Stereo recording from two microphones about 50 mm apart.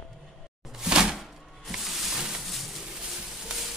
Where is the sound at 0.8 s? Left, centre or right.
Centre.